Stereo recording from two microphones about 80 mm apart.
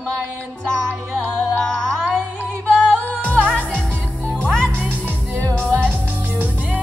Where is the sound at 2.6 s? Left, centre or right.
Centre.